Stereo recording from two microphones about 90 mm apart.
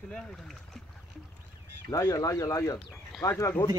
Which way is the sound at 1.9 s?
40° left (ahead or behind).